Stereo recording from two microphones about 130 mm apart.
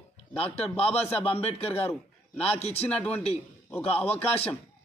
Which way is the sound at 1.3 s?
45° left (ahead or behind).